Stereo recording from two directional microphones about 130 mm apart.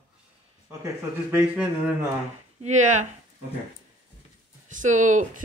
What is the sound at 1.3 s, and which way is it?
Speech, 10° right (ahead or behind).